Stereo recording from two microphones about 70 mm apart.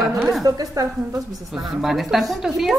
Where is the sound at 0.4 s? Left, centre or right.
Right.